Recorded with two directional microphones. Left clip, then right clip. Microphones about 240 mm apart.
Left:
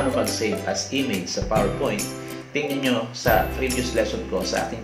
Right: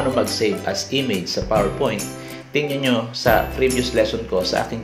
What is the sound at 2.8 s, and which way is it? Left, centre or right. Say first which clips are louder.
Speech: right 3 dB; right.